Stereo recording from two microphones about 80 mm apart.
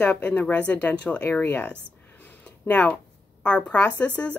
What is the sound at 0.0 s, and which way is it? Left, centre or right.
Speech, left.